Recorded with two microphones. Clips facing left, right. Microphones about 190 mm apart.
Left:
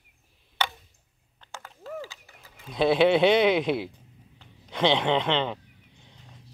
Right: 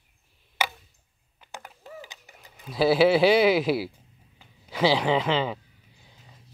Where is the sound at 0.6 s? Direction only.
10° right (ahead or behind).